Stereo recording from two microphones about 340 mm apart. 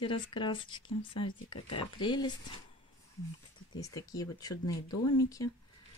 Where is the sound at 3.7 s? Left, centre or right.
Centre.